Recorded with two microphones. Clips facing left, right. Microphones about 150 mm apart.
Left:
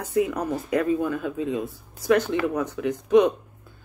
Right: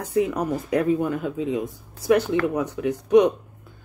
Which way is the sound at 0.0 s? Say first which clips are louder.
Right 1 dB; 15° right (ahead or behind).